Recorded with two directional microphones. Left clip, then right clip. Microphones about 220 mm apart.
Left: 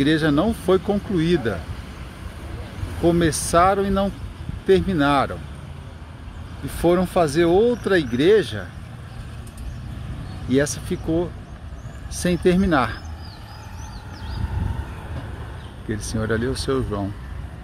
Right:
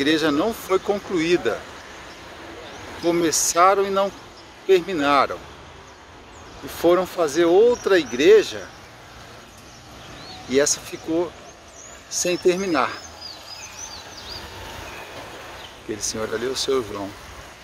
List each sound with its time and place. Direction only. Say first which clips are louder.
0.0 s speech: even; 5° right (ahead or behind)
3.1 s speech: left 1 dB; centre (ahead or behind)
6.8 s speech: even; 5° left (ahead or behind)
10.5 s speech: right 1 dB; centre (ahead or behind)
16.0 s speech: left 1 dB; centre (ahead or behind)